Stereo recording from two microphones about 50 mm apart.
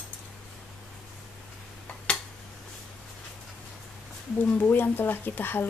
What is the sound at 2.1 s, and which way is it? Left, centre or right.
Tick-tock, centre.